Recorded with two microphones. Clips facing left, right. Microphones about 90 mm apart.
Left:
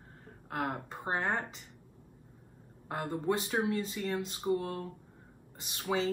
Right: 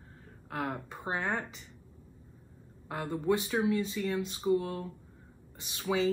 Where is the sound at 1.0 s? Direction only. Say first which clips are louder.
Left 1 dB; 40° left (ahead or behind).